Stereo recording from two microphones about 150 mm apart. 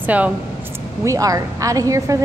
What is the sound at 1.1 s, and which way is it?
A woman's voice, 20° right (ahead or behind).